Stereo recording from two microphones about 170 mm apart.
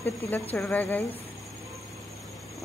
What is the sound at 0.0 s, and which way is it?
Speech, 10° left (ahead or behind).